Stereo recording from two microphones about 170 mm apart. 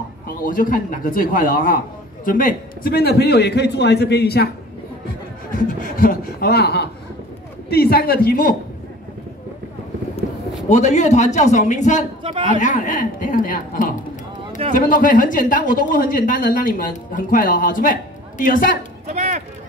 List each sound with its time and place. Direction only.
0.4 s a man's voice: 55° left (ahead or behind); by 4.5 s 70° left (ahead or behind)
5.5 s a man's voice: 55° left (ahead or behind); by 6.9 s 75° left (ahead or behind)
7.7 s a man's voice: 65° left (ahead or behind)
10.7 s speech: 45° left (ahead or behind)
19.0 s chop: 45° right (ahead or behind)